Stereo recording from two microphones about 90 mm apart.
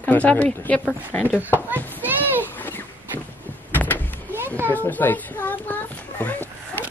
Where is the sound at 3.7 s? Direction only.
20° left (ahead or behind).